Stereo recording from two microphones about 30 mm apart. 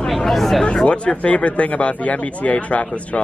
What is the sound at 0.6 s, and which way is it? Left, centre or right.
Speech, left.